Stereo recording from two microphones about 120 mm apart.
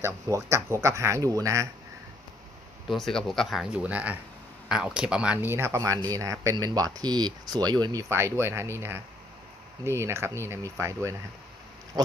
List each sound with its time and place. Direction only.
0.0 s speech: 25° right (ahead or behind)
2.9 s speech: 5° left (ahead or behind); by 11.0 s 25° right (ahead or behind)